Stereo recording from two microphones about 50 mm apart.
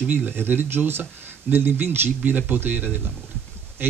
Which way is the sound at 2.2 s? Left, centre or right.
Right.